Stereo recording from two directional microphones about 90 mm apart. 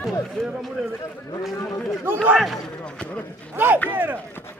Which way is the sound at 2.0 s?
20° right (ahead or behind).